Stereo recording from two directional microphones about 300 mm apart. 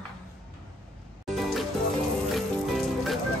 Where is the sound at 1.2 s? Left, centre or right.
Centre.